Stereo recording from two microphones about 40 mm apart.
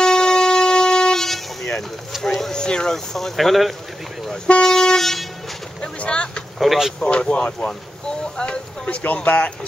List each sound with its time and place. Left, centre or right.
0.0 s vehicle: centre
2.5 s speech: centre
4.6 s vehicle: centre
5.9 s speech: left
6.6 s speech: centre
7.0 s speech: left
9.0 s speech: left